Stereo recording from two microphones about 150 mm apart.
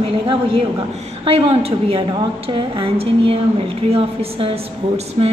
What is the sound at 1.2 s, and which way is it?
A woman's voice, 40° right (ahead or behind).